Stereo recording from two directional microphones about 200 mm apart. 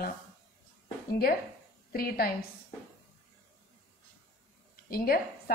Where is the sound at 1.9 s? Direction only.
50° left (ahead or behind).